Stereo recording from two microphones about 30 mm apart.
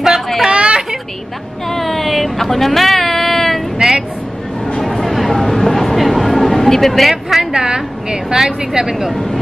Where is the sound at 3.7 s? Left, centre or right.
Right.